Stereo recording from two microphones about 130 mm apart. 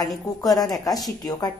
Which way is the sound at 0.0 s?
30° left (ahead or behind).